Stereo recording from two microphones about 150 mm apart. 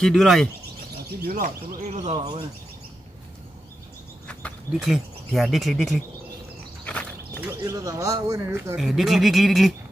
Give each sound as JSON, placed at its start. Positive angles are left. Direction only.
{"t": 0.0, "sound": "speech", "side_deg": 0}
{"t": 1.2, "sound": "speech", "side_deg": -90}
{"t": 1.9, "sound": "speech", "side_deg": -50}
{"t": 4.3, "sound": "a sound", "side_deg": 10}
{"t": 4.8, "sound": "speech", "side_deg": 0}
{"t": 6.8, "sound": "a sound", "side_deg": 10}
{"t": 7.3, "sound": "speech", "side_deg": -20}
{"t": 8.7, "sound": "speech", "side_deg": 0}